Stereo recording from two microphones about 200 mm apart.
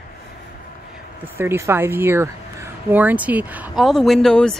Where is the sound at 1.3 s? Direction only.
10° right (ahead or behind); by 4.5 s 5° left (ahead or behind).